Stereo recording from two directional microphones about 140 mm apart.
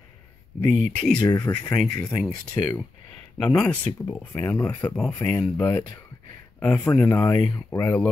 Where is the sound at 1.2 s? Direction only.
30° left (ahead or behind).